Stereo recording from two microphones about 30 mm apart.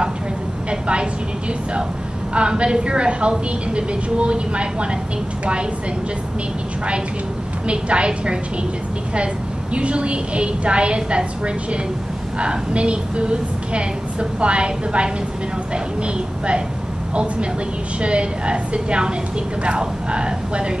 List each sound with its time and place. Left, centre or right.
0.7 s a woman's voice: right
2.3 s a woman's voice: right
7.6 s a woman's voice: right
9.8 s a woman's voice: right